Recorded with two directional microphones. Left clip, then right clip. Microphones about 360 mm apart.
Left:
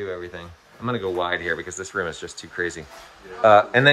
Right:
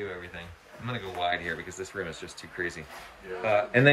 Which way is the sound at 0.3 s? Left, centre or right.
Centre.